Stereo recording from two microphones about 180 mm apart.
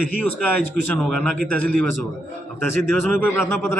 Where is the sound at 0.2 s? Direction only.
10° left (ahead or behind).